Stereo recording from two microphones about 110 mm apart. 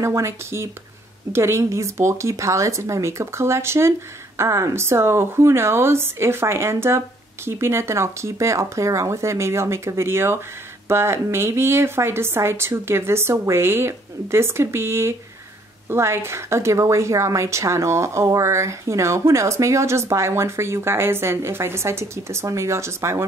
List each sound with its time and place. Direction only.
0.0 s a woman's voice: 25° right (ahead or behind)